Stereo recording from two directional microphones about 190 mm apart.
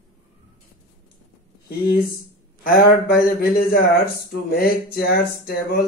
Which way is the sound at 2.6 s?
50° left (ahead or behind).